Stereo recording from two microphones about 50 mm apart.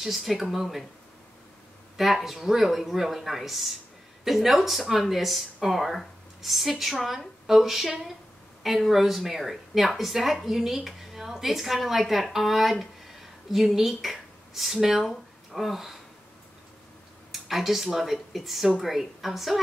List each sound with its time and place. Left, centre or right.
0.0 s a woman's voice: centre
2.0 s a woman's voice: centre
17.3 s a woman's voice: centre